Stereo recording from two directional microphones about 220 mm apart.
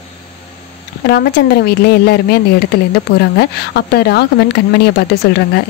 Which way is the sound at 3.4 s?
45° left (ahead or behind).